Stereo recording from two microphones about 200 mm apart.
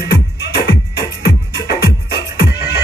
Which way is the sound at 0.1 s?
55° left (ahead or behind).